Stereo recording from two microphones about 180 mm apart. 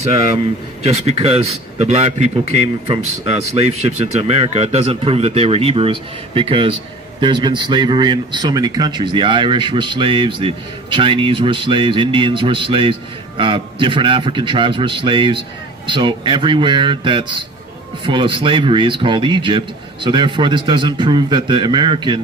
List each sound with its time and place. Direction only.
0.8 s a man's voice: 35° right (ahead or behind)